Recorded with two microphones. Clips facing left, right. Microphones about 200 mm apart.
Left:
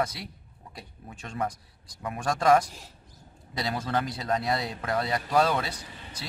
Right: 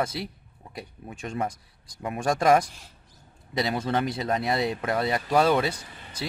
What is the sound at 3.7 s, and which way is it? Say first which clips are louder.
Speech: right 1 dB; 25° right (ahead or behind).